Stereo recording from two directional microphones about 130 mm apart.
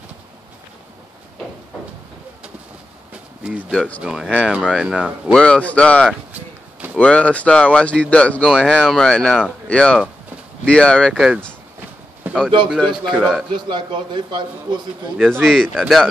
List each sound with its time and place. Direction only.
3.1 s a sound: 10° right (ahead or behind)
4.0 s speech: 5° right (ahead or behind)
5.3 s speech: 10° left (ahead or behind)
8.5 s speech: 5° right (ahead or behind)
12.2 s a sound: 15° right (ahead or behind)
12.6 s speech: centre (ahead or behind)
13.7 s a man's voice: 35° right (ahead or behind)
15.1 s speech: 10° right (ahead or behind)
15.4 s speech: 5° left (ahead or behind)